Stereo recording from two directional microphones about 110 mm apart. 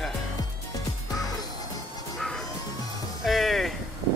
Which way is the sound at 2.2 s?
5° left (ahead or behind).